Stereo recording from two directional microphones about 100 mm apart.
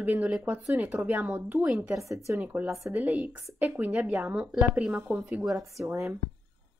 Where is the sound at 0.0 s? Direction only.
15° right (ahead or behind).